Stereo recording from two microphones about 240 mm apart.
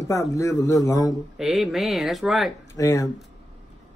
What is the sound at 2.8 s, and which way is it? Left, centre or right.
Speech, centre.